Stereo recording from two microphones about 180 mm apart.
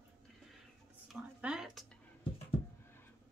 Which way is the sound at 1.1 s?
5° right (ahead or behind).